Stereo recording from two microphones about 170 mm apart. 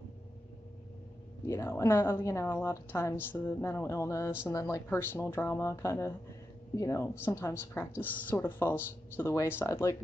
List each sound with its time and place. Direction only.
1.4 s speech: 15° left (ahead or behind)